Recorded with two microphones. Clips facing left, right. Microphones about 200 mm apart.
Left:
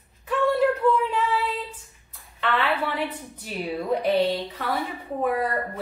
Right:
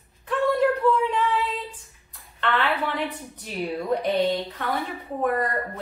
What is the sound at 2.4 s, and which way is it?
A woman's voice, 5° left (ahead or behind).